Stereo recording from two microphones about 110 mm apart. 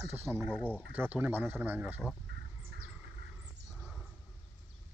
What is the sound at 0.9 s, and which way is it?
Speech, 15° right (ahead or behind).